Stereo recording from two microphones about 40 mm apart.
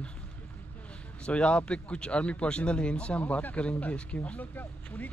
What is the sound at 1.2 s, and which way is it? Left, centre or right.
A man's voice, left.